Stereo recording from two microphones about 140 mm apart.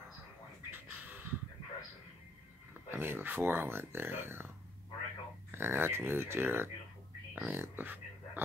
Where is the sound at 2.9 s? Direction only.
15° right (ahead or behind).